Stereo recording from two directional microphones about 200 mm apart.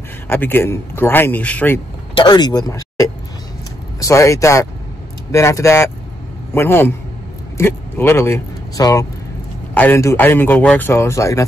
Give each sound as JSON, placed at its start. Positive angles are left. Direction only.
{"t": 0.3, "sound": "a man's voice", "side_deg": 10}
{"t": 2.1, "sound": "a man's voice", "side_deg": 20}